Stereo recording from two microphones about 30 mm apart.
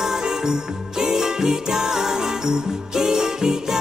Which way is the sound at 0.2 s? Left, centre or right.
Right.